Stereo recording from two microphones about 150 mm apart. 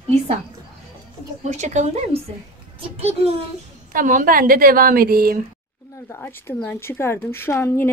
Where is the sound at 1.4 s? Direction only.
50° right (ahead or behind).